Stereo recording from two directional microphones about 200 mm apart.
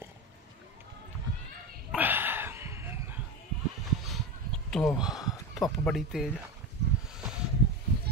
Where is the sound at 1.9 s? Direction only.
10° right (ahead or behind).